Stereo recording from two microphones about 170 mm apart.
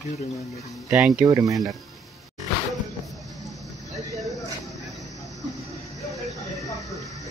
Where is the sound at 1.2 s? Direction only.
20° right (ahead or behind).